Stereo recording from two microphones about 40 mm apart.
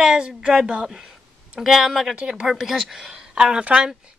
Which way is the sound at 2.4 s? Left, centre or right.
Centre.